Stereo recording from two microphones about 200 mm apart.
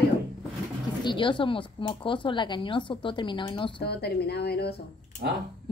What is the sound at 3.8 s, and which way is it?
Speech, 55° left (ahead or behind).